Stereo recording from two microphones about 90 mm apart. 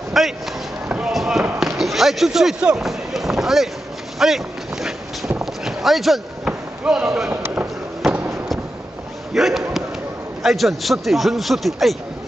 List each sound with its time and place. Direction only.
0.1 s basketball bounce: 5° right (ahead or behind)
1.8 s speech: centre (ahead or behind)
5.4 s a sound: 5° right (ahead or behind)
6.8 s a man's voice: 5° right (ahead or behind)
7.2 s speech: 20° right (ahead or behind)
9.3 s basketball bounce: 5° right (ahead or behind)
10.4 s a man's voice: centre (ahead or behind)